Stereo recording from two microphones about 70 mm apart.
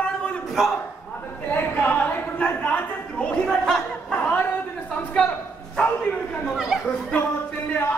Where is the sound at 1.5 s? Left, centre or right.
Left.